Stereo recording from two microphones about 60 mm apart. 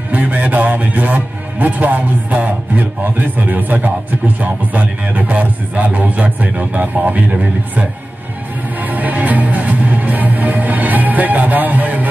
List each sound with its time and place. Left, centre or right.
0.1 s speech: right
8.8 s music: right